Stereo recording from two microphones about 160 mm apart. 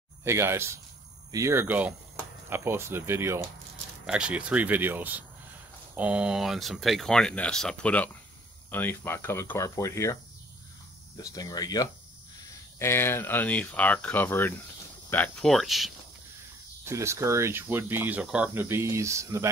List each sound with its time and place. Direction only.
0.2 s speech: 15° right (ahead or behind); by 10.1 s 20° left (ahead or behind)
11.1 s speech: 25° left (ahead or behind); by 15.9 s centre (ahead or behind)
16.8 s speech: 15° right (ahead or behind)